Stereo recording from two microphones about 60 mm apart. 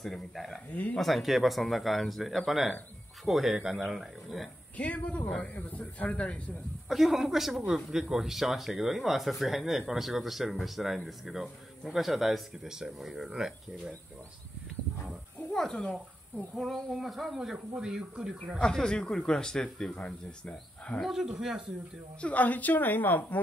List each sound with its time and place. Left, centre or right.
0.0 s speech: centre
4.7 s a woman's voice: left
6.9 s speech: centre
15.5 s speech: centre
18.6 s speech: centre
21.0 s speech: centre
22.2 s a woman's voice: left